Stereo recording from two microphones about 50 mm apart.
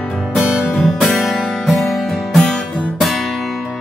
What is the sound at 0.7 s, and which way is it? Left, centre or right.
Music, centre.